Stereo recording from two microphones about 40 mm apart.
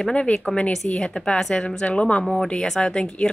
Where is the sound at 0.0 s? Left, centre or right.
Left.